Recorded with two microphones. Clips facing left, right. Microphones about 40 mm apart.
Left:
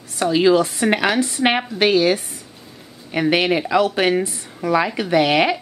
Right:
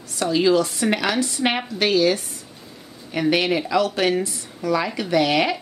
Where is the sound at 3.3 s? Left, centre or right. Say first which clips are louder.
Left 2 dB; left.